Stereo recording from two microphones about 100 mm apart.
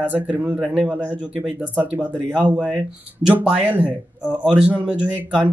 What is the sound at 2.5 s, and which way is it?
Speech, 5° right (ahead or behind).